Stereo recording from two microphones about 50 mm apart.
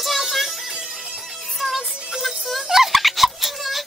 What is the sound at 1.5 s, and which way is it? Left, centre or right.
Music, centre.